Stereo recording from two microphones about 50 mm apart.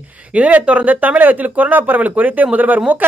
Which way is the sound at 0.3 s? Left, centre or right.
Right.